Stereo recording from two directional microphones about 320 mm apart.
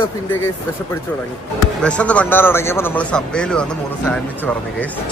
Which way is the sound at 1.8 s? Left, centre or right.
Centre.